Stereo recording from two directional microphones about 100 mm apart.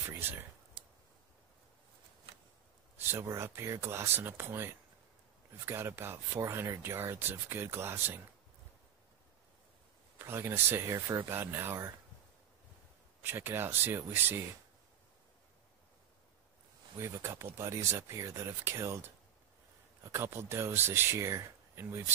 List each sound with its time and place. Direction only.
0.0 s speech: 20° right (ahead or behind)
3.1 s speech: 25° right (ahead or behind)
10.1 s speech: 25° right (ahead or behind)
13.2 s speech: 20° right (ahead or behind)
17.0 s speech: 25° right (ahead or behind)